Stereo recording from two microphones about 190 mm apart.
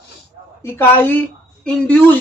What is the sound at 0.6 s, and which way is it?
A woman's voice, 10° left (ahead or behind).